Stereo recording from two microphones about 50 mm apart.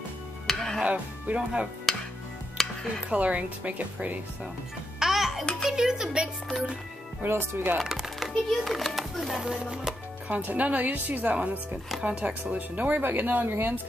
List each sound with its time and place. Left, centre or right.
0.5 s music: centre
0.8 s speech: right
2.5 s music: centre
3.1 s speech: right
4.9 s music: centre
5.7 s speech: centre
7.2 s speech: right
7.8 s music: centre
8.3 s a child's voice: centre
10.2 s speech: right